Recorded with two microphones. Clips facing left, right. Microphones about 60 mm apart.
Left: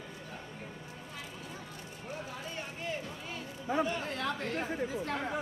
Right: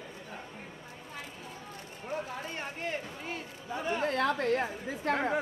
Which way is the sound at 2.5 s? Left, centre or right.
Right.